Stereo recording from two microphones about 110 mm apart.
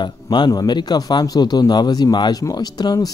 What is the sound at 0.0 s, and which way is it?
Speech, 45° left (ahead or behind).